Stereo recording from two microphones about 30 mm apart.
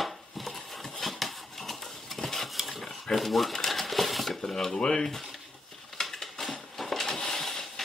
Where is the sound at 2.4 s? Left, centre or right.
Centre.